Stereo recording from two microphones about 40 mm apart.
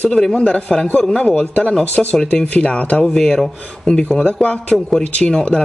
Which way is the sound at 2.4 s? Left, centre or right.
Left.